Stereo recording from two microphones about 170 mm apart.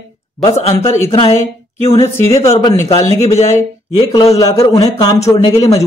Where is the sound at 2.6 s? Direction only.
20° left (ahead or behind).